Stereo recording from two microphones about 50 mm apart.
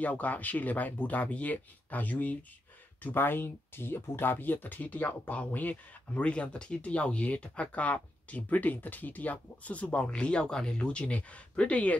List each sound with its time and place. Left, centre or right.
0.0 s speech: left